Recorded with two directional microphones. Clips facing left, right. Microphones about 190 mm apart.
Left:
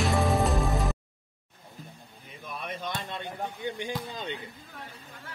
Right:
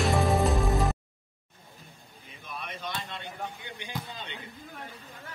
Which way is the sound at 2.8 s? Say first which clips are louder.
Left 1 dB; 50° left (ahead or behind).